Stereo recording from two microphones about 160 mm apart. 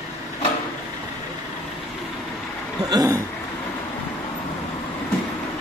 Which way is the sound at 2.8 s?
25° right (ahead or behind).